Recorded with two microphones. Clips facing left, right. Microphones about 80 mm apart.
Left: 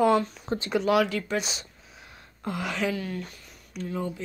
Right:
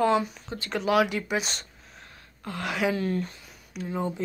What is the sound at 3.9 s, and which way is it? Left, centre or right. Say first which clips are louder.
Speech: right 2 dB; right.